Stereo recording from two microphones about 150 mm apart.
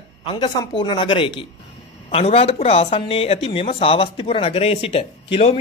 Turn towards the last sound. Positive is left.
turn(degrees=40)  # may be behind; listen again after turning